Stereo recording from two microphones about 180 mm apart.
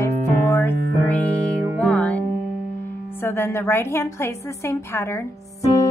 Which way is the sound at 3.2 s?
15° left (ahead or behind).